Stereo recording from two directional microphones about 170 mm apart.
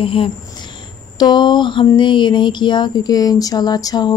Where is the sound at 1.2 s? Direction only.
25° left (ahead or behind).